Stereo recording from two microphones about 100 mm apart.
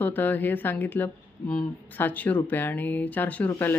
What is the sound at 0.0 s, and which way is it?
A woman's voice, 20° left (ahead or behind).